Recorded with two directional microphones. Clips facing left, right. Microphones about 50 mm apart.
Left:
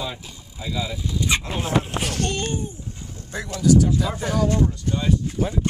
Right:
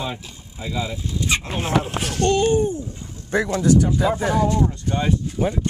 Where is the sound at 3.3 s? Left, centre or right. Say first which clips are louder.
Right 2 dB; right.